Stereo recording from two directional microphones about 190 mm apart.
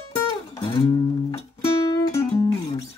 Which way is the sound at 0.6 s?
25° left (ahead or behind).